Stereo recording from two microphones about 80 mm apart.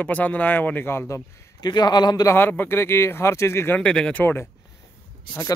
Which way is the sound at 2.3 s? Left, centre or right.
Left.